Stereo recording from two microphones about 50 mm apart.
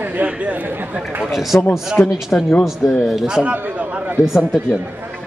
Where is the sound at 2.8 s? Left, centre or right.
Centre.